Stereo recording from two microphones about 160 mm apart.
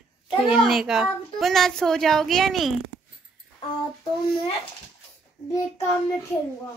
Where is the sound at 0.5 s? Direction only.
Centre (ahead or behind).